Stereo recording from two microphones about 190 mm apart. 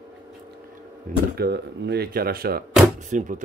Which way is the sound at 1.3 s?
60° right (ahead or behind).